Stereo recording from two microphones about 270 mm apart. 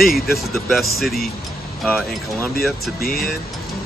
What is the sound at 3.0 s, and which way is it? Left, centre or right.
Speech, left.